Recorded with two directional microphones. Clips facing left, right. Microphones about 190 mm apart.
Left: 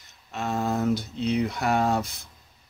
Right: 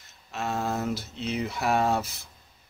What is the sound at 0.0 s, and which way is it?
Speech, centre (ahead or behind).